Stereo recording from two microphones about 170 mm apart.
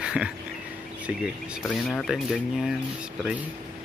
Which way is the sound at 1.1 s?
5° right (ahead or behind).